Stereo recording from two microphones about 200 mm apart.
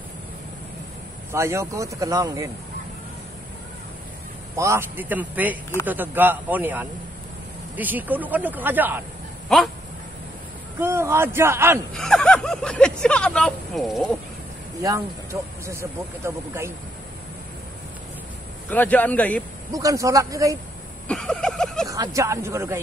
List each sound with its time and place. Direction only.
1.3 s speech: 15° right (ahead or behind)
4.6 s speech: 15° right (ahead or behind)
9.5 s speech: centre (ahead or behind)
10.8 s speech: 10° right (ahead or behind)
11.9 s speech: centre (ahead or behind)
15.6 s speech: 15° right (ahead or behind)
18.7 s speech: 10° left (ahead or behind)
19.7 s speech: 15° right (ahead or behind)
21.1 s speech: 5° left (ahead or behind)
21.8 s speech: 15° right (ahead or behind)